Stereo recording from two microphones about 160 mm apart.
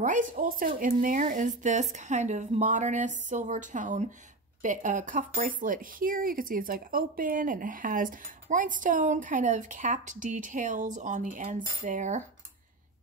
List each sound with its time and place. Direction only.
0.0 s speech: 55° right (ahead or behind)